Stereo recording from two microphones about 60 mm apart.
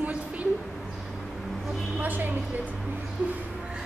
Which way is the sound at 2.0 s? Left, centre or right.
Right.